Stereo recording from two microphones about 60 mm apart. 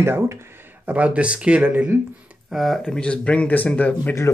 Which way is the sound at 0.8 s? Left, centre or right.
Right.